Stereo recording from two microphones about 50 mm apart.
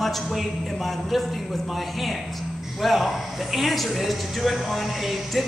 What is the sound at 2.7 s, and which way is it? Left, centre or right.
A man's voice, centre.